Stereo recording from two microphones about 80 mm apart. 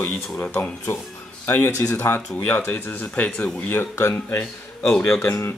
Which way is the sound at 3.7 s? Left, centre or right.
Left.